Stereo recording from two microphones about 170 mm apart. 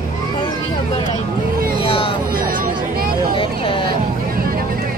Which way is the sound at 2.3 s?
55° right (ahead or behind).